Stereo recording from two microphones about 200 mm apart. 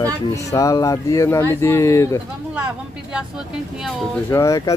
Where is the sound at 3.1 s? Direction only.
5° right (ahead or behind).